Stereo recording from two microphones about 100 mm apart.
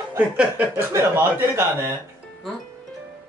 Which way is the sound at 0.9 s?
25° right (ahead or behind).